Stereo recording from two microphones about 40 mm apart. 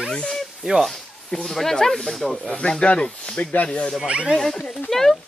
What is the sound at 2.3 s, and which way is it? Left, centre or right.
A woman's voice, centre.